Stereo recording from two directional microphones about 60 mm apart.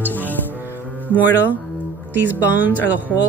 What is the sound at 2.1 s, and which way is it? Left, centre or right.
Speech, right.